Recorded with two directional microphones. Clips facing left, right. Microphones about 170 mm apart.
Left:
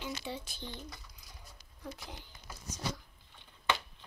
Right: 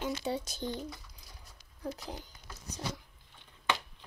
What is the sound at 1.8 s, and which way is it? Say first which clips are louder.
Speech: right 6 dB; 40° right (ahead or behind).